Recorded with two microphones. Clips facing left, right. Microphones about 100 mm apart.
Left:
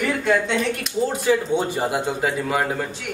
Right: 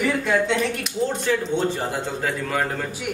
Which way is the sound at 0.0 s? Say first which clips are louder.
Left 1 dB; centre (ahead or behind).